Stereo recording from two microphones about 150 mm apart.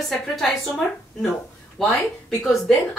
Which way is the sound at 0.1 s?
Centre (ahead or behind).